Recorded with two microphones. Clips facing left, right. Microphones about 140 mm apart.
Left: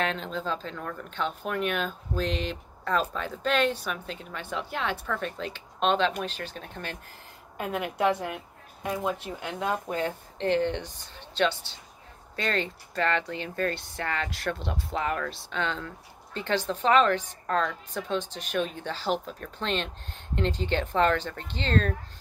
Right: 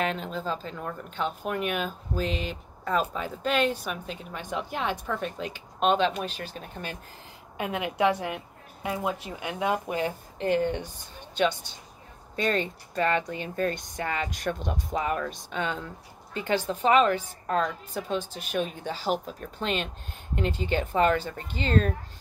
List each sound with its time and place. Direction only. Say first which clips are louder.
0.0 s speech: even; 5° right (ahead or behind)